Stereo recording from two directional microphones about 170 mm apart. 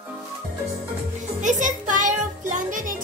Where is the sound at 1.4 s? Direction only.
50° right (ahead or behind).